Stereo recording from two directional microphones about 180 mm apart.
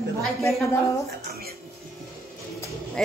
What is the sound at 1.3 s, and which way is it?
Speech, 60° right (ahead or behind).